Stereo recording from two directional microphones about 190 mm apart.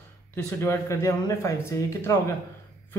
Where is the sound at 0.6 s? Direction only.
15° left (ahead or behind).